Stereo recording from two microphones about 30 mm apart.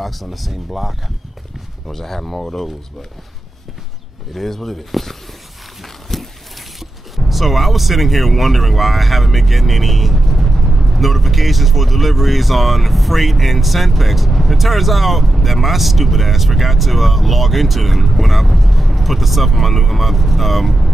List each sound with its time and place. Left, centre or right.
0.0 s speech: centre
2.0 s speech: centre
4.3 s speech: centre
6.1 s a sound: centre
6.8 s speech: centre